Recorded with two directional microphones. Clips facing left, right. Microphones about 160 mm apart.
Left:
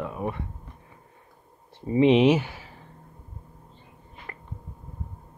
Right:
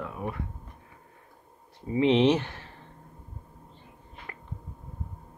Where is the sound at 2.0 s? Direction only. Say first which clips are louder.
Left 3 dB; 10° left (ahead or behind).